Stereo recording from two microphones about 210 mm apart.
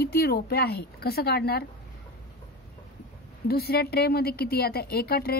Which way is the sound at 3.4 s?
45° left (ahead or behind).